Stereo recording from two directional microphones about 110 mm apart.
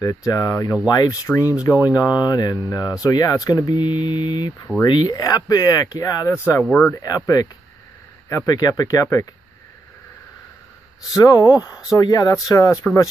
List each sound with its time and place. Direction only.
0.0 s speech: 30° left (ahead or behind)
7.3 s speech: 35° left (ahead or behind)
11.1 s speech: 35° left (ahead or behind)